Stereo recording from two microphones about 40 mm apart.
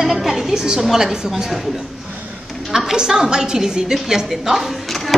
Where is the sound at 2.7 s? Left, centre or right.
Centre.